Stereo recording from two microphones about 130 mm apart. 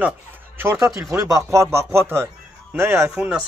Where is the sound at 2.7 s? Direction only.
20° right (ahead or behind).